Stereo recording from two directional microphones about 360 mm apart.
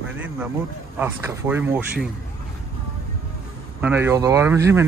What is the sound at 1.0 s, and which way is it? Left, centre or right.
Speech, centre.